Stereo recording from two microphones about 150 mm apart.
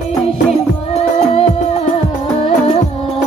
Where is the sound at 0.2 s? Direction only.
45° left (ahead or behind).